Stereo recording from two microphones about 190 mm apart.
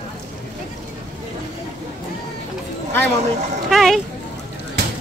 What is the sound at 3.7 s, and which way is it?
Speech, centre (ahead or behind).